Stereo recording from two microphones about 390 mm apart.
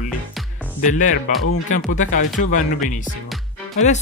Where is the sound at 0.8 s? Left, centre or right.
Centre.